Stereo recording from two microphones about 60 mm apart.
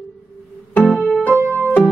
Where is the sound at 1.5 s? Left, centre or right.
Left.